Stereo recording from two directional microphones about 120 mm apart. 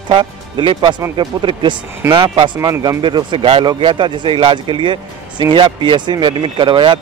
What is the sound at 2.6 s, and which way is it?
Speech, 30° right (ahead or behind).